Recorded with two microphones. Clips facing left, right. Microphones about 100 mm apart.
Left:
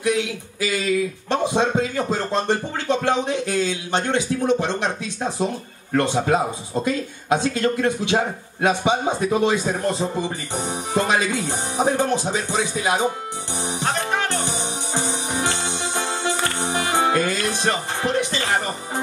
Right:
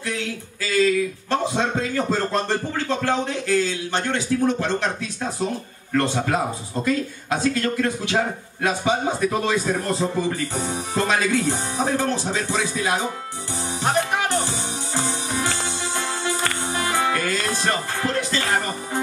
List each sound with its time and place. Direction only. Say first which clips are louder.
0.0 s a sound: left 6 dB; 15° left (ahead or behind)
1.3 s speech: left 3 dB; 20° left (ahead or behind)
6.1 s speech: left 3 dB; 25° left (ahead or behind)
14.3 s music: right 1 dB; 20° left (ahead or behind)